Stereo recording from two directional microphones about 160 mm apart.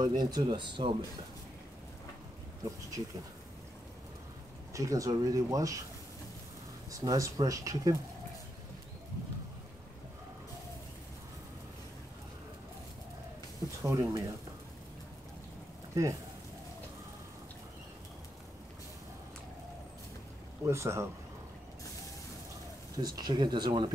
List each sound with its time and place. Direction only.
0.0 s speech: 25° right (ahead or behind)
4.7 s speech: 20° right (ahead or behind)
6.9 s speech: 20° right (ahead or behind)
13.8 s speech: 20° right (ahead or behind)
15.9 s speech: 20° right (ahead or behind)
20.6 s speech: 15° right (ahead or behind)
22.9 s speech: 25° right (ahead or behind)